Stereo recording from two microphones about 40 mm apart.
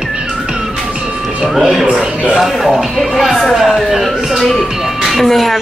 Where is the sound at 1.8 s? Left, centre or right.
Centre.